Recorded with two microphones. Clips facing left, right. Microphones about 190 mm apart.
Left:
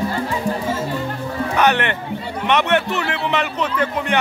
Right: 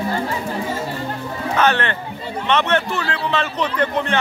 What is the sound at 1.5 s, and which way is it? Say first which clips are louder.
Speech: even; 15° left (ahead or behind).